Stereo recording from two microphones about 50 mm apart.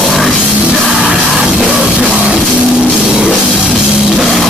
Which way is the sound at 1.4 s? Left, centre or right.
Centre.